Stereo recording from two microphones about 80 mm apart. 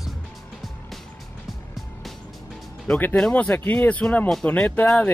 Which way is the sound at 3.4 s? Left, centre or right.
Left.